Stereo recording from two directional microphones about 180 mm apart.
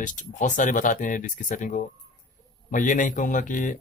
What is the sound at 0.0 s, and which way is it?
Speech, 45° left (ahead or behind).